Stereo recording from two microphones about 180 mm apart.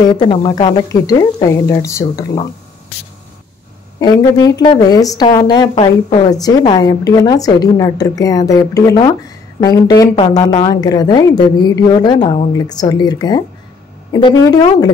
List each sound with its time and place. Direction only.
0.1 s a woman's voice: 25° left (ahead or behind)
4.0 s a woman's voice: 20° left (ahead or behind)
6.0 s a woman's voice: 35° left (ahead or behind)
6.3 s a woman's voice: 20° left (ahead or behind)